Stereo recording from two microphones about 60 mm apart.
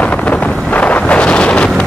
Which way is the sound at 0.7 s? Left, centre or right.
Left.